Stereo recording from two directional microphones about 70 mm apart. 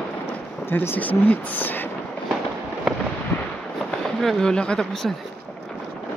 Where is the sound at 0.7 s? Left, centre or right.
Left.